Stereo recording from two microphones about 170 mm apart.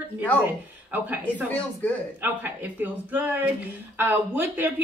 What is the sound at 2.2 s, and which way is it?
A woman's voice, 10° right (ahead or behind).